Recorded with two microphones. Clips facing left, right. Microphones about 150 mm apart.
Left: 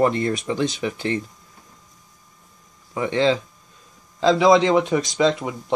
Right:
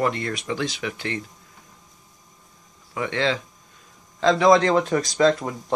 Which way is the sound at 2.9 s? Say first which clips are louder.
Left 5 dB; 20° left (ahead or behind).